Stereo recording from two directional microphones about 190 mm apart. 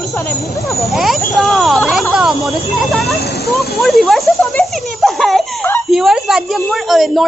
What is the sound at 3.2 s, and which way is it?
Speech, 55° left (ahead or behind).